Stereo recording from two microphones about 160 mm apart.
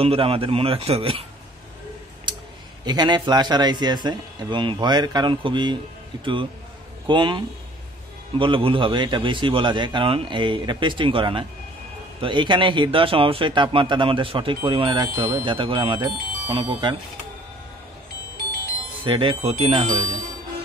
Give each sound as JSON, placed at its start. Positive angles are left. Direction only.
{"t": 0.0, "sound": "a man's voice", "side_deg": -35}
{"t": 2.8, "sound": "a man's voice", "side_deg": -25}
{"t": 19.0, "sound": "a man's voice", "side_deg": -30}